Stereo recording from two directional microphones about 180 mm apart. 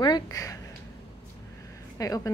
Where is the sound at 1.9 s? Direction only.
20° left (ahead or behind).